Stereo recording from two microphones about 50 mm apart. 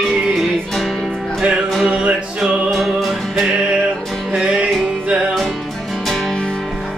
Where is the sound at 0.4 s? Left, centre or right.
Centre.